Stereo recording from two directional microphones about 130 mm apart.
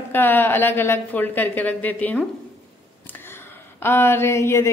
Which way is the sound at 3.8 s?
20° left (ahead or behind).